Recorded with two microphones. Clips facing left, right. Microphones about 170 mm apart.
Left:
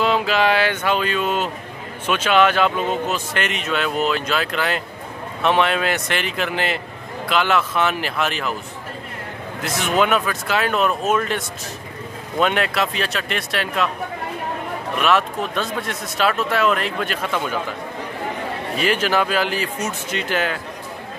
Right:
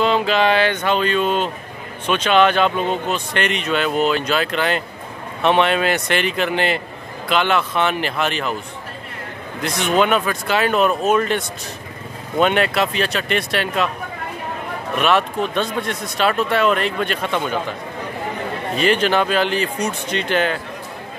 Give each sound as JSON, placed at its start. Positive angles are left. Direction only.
{"t": 0.0, "sound": "speech", "side_deg": 5}
{"t": 9.6, "sound": "speech", "side_deg": 5}
{"t": 15.0, "sound": "speech", "side_deg": 0}
{"t": 18.8, "sound": "speech", "side_deg": 5}